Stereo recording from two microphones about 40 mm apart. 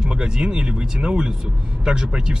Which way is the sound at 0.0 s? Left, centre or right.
Right.